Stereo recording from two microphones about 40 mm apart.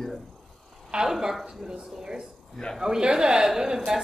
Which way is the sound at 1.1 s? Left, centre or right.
Centre.